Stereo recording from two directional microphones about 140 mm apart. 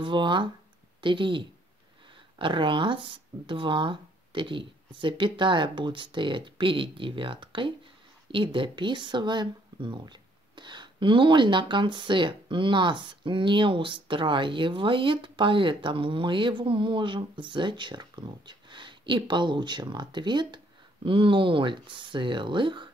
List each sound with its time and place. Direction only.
0.0 s speech: 35° right (ahead or behind)